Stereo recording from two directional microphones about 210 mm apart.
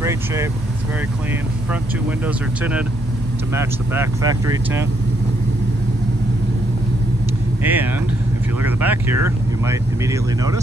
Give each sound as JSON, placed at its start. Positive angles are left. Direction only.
{"t": 2.2, "sound": "speech", "side_deg": -5}
{"t": 7.6, "sound": "speech", "side_deg": -10}